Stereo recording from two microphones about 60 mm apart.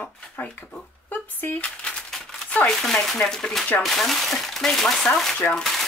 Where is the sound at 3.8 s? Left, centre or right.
Centre.